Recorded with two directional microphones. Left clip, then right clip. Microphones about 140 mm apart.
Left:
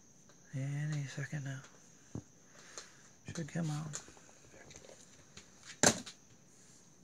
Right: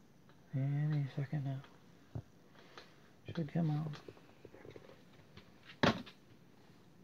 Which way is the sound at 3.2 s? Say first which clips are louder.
Right 1 dB; 15° right (ahead or behind).